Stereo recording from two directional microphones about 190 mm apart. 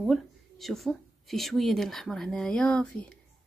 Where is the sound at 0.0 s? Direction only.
Centre (ahead or behind).